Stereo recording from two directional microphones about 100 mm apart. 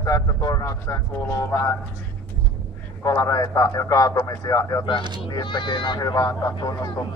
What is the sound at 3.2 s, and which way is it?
Speech, 35° left (ahead or behind).